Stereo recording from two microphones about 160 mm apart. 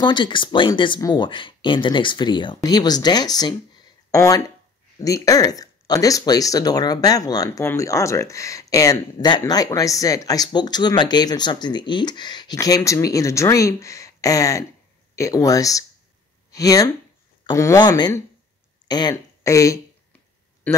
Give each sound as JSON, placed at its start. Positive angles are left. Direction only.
{"t": 0.0, "sound": "a man's voice", "side_deg": 30}